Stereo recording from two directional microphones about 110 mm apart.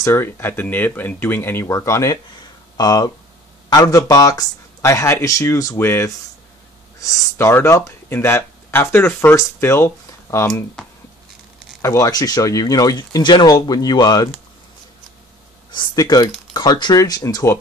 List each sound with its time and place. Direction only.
0.0 s speech: 20° left (ahead or behind)
11.8 s speech: 25° left (ahead or behind)
12.1 s speech: 35° left (ahead or behind)
15.7 s speech: 40° left (ahead or behind)